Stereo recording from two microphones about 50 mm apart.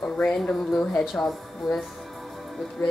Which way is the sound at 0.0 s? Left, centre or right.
Centre.